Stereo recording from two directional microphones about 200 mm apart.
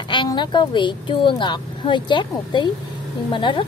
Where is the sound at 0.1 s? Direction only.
25° left (ahead or behind).